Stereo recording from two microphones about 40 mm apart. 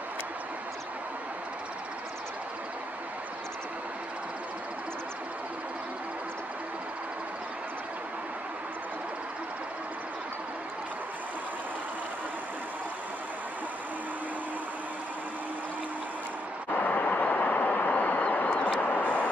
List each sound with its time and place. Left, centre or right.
16.7 s vehicle: left